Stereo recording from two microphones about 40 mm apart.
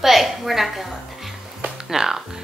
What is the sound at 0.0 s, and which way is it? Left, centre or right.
Speech, centre.